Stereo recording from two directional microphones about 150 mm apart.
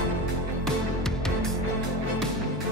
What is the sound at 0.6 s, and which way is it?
Music, 5° left (ahead or behind).